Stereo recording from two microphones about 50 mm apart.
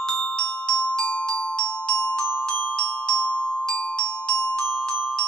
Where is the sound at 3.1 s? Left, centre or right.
Left.